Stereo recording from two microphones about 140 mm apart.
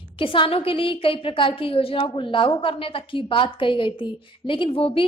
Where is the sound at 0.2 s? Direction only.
40° left (ahead or behind).